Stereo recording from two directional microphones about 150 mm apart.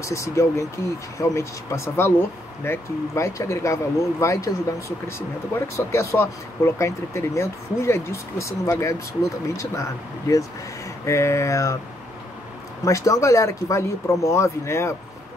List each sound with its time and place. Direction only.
0.0 s speech: 20° left (ahead or behind)
12.8 s speech: 20° left (ahead or behind)